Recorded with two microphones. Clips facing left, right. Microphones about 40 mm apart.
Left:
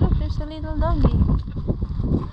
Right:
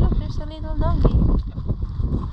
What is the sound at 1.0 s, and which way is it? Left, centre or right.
Boat, centre.